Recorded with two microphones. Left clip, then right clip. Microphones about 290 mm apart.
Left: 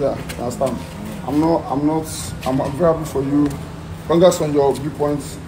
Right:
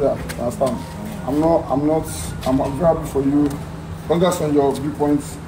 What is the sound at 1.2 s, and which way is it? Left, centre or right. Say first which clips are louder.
Speech: right 1 dB; centre.